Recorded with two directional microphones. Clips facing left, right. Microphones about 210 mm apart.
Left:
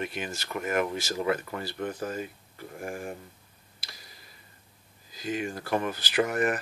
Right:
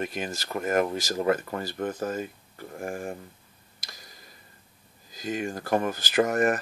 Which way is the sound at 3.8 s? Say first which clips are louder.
Right 2 dB; 45° right (ahead or behind).